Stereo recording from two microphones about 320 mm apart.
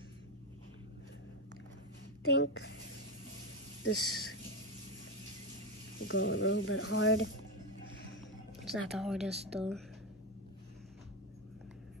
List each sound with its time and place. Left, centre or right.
2.3 s speech: left
3.8 s speech: left
5.9 s speech: left
8.8 s speech: centre
9.3 s speech: centre